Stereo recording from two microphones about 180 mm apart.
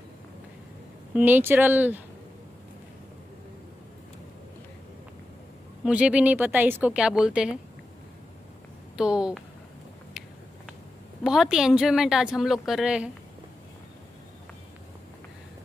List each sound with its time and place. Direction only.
1.1 s speech: 10° right (ahead or behind)
5.9 s speech: 5° right (ahead or behind)
8.9 s a woman's voice: 5° right (ahead or behind)
11.2 s a woman's voice: 5° right (ahead or behind)